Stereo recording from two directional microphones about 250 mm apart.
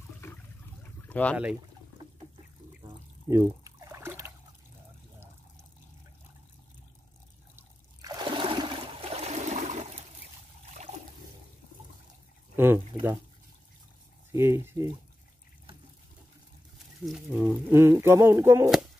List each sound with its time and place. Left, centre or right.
0.2 s water: centre
1.0 s speech: centre
3.3 s a sound: centre
7.5 s trickle: centre
12.5 s speech: centre
14.3 s speech: centre
17.0 s speech: centre